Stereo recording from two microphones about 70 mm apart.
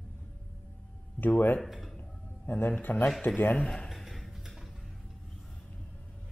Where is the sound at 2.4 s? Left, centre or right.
Left.